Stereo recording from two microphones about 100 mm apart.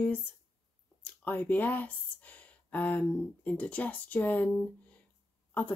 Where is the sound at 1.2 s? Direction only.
15° left (ahead or behind).